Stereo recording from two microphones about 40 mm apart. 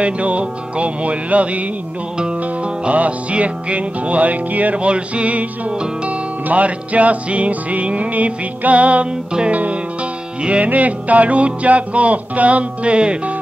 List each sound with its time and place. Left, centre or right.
0.0 s music: right
2.1 s music: right